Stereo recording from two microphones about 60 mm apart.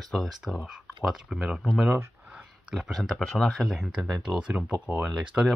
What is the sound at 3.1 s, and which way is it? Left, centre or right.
Speech, centre.